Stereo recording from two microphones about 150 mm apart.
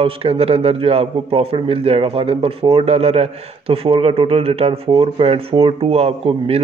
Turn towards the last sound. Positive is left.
turn(degrees=-40)  # may be behind; listen again after turning